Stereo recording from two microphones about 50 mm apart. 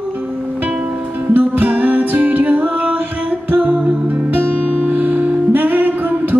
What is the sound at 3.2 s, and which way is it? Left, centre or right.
Music, right.